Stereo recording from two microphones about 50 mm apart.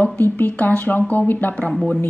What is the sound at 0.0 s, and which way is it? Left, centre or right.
A woman's voice, left.